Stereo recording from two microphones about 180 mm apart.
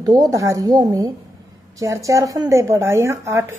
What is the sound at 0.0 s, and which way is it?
A woman's voice, 20° right (ahead or behind).